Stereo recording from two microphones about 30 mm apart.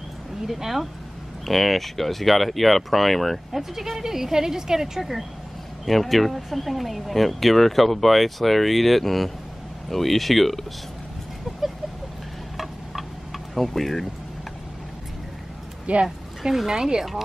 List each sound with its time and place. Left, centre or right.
0.5 s a woman's voice: centre
1.4 s speech: centre
3.7 s a woman's voice: centre
5.9 s speech: centre
13.6 s speech: centre
15.9 s speech: right
16.4 s a woman's voice: centre
16.7 s speech: right